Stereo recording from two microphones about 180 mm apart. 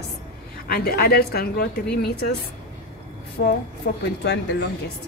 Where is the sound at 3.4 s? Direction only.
70° left (ahead or behind).